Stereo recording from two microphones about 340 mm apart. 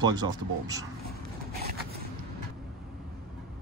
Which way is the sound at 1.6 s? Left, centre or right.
Right.